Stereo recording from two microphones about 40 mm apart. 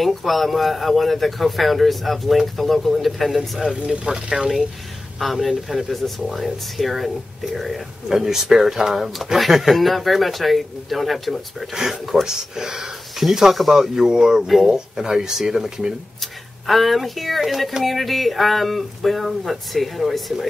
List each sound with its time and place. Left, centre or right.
0.0 s speech: centre
3.8 s speech: right
5.2 s speech: centre
11.7 s speech: centre
16.6 s speech: centre